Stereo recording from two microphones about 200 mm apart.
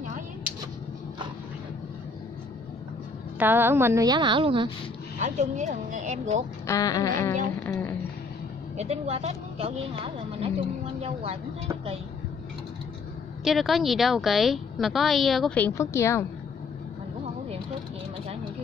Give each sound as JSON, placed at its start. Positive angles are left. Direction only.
{"t": 3.3, "sound": "a woman's voice", "side_deg": -10}
{"t": 6.6, "sound": "speech", "side_deg": 15}
{"t": 8.7, "sound": "speech", "side_deg": -30}
{"t": 13.4, "sound": "a woman's voice", "side_deg": 0}